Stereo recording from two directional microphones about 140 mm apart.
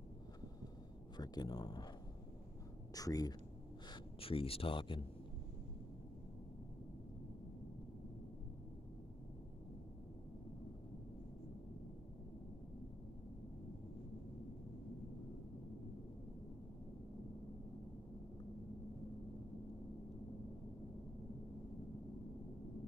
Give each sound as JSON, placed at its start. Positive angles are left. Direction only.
{"t": 1.1, "sound": "speech", "side_deg": 30}
{"t": 2.9, "sound": "speech", "side_deg": 25}
{"t": 3.9, "sound": "speech", "side_deg": 40}